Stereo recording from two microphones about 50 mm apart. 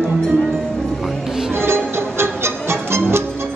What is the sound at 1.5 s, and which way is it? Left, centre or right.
Music, right.